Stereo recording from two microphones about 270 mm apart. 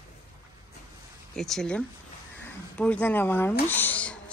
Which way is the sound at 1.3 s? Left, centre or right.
Centre.